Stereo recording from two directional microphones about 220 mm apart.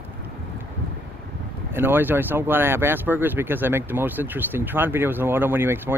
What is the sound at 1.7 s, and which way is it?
Speech, 10° right (ahead or behind).